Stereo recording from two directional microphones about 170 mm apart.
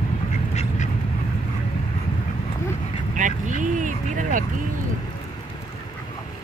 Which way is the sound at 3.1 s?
50° right (ahead or behind).